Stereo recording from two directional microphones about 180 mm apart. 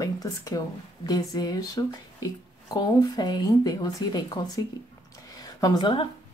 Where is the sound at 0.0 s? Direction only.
20° left (ahead or behind).